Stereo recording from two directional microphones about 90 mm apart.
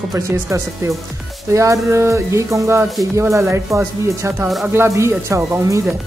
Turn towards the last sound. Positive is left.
turn(degrees=-35)  # may be behind; listen again after turning